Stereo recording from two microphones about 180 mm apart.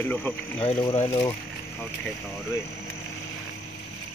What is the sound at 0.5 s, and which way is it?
Speech, 30° left (ahead or behind).